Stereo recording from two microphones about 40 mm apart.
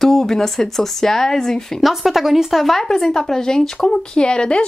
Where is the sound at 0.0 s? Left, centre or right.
Centre.